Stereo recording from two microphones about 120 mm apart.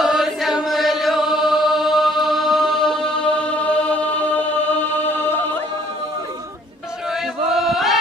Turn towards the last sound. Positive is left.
turn(degrees=0)  # may be behind; listen again after turning